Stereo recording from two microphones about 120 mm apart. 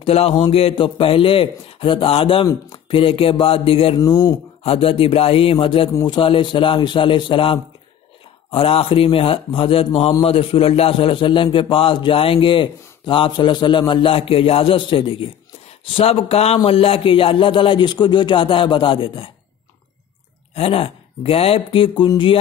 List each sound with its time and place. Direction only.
0.0 s a man's voice: 55° left (ahead or behind)
4.0 s speech: 35° left (ahead or behind)
4.6 s a man's voice: 50° left (ahead or behind)
20.5 s a man's voice: 55° left (ahead or behind)